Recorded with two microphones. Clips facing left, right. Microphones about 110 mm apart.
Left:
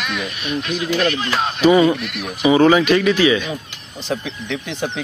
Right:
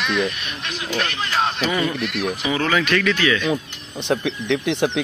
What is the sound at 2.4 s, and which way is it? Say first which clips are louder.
Speech: left 10 dB; 20° left (ahead or behind).